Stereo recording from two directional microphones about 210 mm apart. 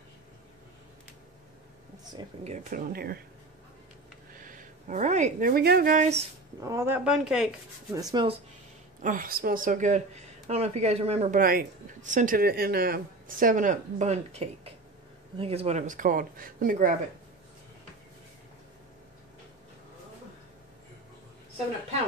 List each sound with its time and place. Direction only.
2.4 s speech: 35° right (ahead or behind)
4.4 s speech: 40° right (ahead or behind)
6.6 s speech: 15° right (ahead or behind)
7.9 s speech: 20° right (ahead or behind)
9.0 s speech: 40° right (ahead or behind)